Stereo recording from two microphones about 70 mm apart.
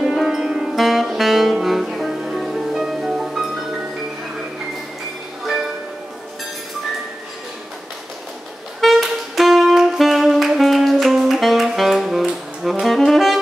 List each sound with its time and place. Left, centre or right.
0.0 s music: centre
8.8 s saxophone: centre